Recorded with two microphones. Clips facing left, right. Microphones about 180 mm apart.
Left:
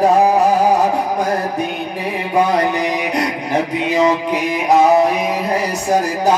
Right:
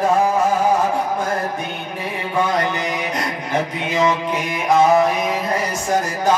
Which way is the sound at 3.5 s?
35° left (ahead or behind).